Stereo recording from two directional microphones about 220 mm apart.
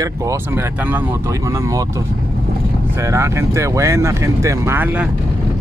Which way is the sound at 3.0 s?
15° right (ahead or behind).